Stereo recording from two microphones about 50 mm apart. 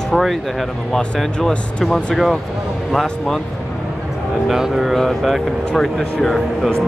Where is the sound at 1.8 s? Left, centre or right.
Centre.